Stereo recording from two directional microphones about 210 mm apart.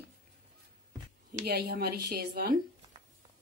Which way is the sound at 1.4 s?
50° right (ahead or behind).